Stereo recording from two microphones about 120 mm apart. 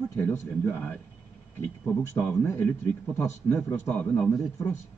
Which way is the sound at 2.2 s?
15° left (ahead or behind).